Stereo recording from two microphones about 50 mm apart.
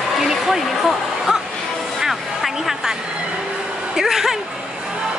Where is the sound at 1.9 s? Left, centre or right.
Centre.